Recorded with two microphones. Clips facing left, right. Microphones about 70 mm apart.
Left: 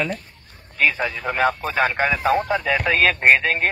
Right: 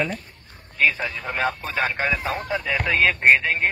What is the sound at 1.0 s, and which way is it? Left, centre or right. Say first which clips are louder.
Speech: left 4 dB; left.